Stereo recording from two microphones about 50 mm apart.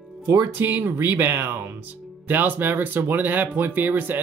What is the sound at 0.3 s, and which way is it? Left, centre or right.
Speech, right.